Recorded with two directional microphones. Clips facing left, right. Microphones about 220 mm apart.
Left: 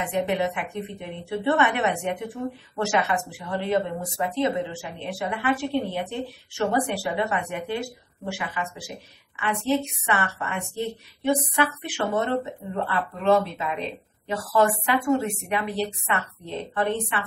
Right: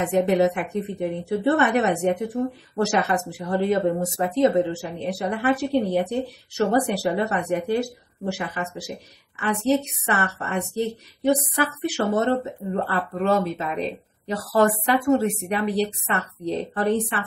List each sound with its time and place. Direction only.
0.0 s speech: 40° right (ahead or behind)